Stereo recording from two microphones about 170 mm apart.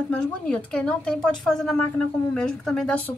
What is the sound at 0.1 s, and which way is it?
A woman's voice, 5° left (ahead or behind).